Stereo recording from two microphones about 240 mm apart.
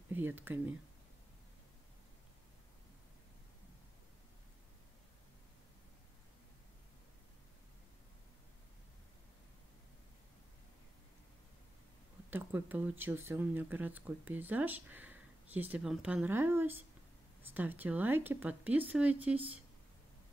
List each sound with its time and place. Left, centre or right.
0.1 s speech: centre
12.3 s speech: centre